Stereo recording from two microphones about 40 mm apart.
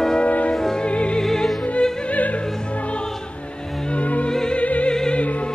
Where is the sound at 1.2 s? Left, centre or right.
Centre.